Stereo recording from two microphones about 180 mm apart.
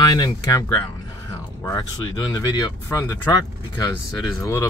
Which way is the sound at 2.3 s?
20° left (ahead or behind).